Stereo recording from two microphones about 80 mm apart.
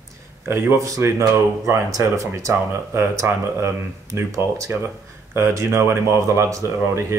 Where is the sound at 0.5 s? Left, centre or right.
Right.